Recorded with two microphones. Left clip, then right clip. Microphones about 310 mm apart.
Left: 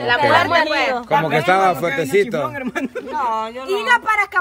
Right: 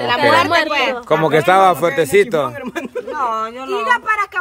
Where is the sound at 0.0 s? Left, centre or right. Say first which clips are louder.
Right 1 dB; right.